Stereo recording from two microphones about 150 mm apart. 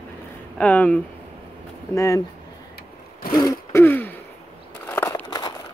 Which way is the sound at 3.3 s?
20° left (ahead or behind).